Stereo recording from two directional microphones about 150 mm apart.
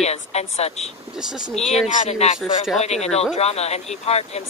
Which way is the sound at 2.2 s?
45° left (ahead or behind).